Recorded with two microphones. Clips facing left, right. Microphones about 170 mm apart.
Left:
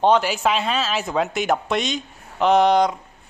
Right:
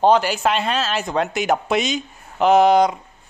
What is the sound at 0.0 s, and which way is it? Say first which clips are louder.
A man's voice: right 2 dB; centre (ahead or behind).